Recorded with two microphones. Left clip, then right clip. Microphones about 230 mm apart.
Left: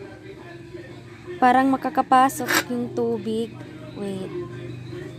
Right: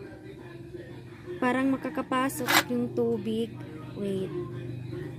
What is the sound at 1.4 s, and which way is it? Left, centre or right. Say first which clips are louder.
A woman's voice: left 10 dB; left.